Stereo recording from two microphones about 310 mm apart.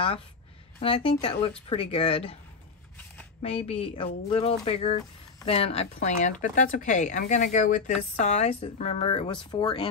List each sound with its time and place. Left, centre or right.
0.7 s speech: centre
3.4 s speech: centre